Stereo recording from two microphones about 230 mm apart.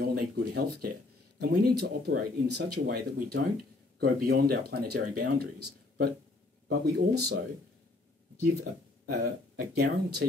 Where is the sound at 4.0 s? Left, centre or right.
Right.